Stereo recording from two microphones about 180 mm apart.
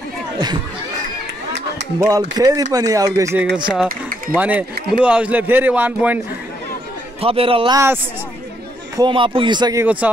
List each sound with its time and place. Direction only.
2.0 s a man's voice: 20° right (ahead or behind)
7.2 s speech: 30° right (ahead or behind)
8.9 s speech: 25° right (ahead or behind)
9.8 s a man's voice: 10° right (ahead or behind)